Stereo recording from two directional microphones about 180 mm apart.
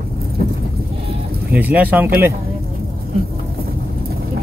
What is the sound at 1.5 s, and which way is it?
Speech, 10° right (ahead or behind).